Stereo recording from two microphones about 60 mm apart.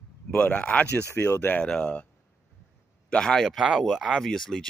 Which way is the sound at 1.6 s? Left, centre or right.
Centre.